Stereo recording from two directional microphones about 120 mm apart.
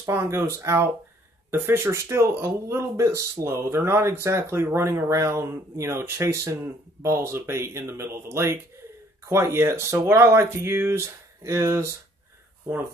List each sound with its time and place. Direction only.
0.0 s speech: 20° right (ahead or behind)